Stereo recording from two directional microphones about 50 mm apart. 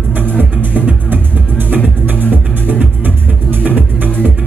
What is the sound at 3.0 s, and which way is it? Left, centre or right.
Music, right.